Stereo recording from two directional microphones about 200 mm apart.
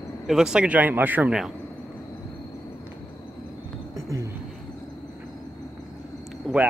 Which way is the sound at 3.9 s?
15° right (ahead or behind).